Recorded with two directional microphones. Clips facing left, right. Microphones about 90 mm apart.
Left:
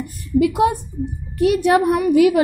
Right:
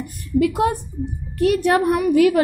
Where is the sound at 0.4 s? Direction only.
10° left (ahead or behind).